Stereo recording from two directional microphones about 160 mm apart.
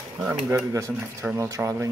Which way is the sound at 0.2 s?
15° right (ahead or behind).